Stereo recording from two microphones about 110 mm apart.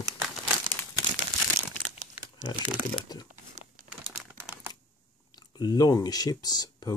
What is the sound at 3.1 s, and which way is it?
Speech, 40° left (ahead or behind).